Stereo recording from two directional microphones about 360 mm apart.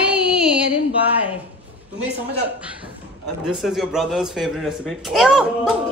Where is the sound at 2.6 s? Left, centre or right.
Centre.